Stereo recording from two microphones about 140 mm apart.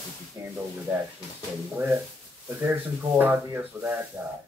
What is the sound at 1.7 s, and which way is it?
Speech, 20° right (ahead or behind).